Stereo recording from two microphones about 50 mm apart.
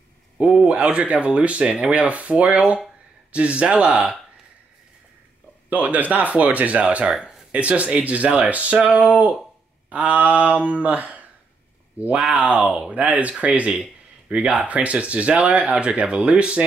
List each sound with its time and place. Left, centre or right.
0.4 s a sound: right
0.9 s speech: right
5.7 s speech: right
7.1 s speech: centre
7.5 s speech: right
12.2 s speech: centre
12.4 s speech: right